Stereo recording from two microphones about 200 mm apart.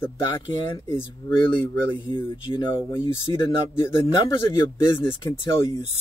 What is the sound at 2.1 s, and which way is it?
A man's voice, 25° left (ahead or behind).